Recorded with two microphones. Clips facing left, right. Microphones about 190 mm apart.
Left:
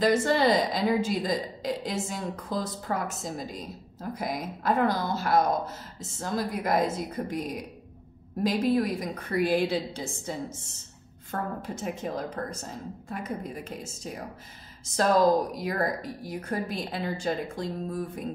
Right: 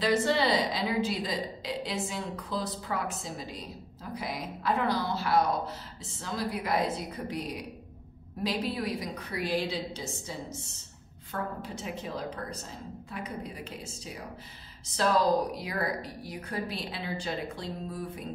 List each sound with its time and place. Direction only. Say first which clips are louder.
0.0 s a woman's voice: left 3 dB; 45° left (ahead or behind)